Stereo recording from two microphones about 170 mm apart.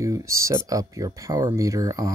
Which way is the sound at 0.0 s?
20° right (ahead or behind).